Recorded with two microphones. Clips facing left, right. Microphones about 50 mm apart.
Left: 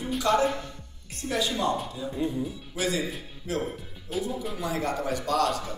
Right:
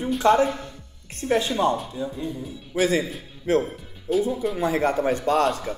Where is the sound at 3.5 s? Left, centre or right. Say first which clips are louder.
Right 8 dB; right.